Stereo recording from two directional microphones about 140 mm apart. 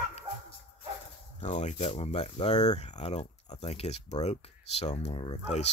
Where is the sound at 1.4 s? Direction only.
55° left (ahead or behind).